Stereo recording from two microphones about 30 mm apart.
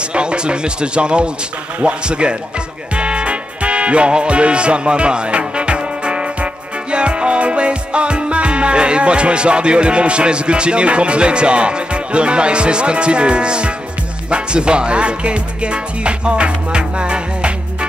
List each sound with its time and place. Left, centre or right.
0.1 s music: right